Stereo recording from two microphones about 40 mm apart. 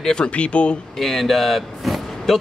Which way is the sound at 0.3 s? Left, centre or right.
Left.